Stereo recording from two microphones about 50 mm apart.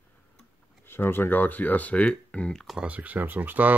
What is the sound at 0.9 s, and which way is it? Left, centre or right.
Speech, left.